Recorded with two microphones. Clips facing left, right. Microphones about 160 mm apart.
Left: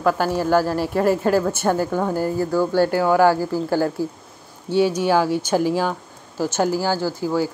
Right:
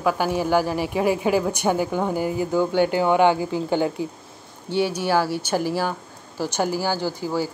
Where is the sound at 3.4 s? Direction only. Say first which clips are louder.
Left 2 dB; centre (ahead or behind).